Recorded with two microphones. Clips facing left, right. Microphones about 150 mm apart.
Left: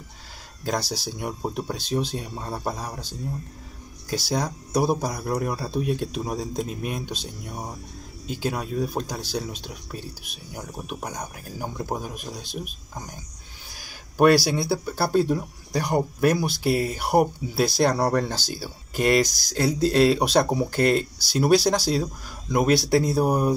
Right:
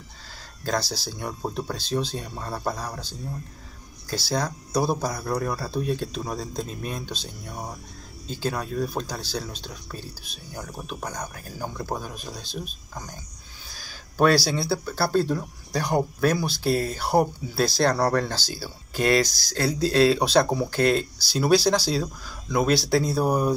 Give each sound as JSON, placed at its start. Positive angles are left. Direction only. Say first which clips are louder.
{"t": 0.7, "sound": "speech", "louder": "even", "side_deg": 15}
{"t": 13.7, "sound": "speech", "louder": "left 2 dB", "side_deg": 15}